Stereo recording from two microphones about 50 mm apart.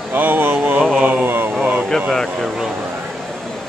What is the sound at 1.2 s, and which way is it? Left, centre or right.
Speech, right.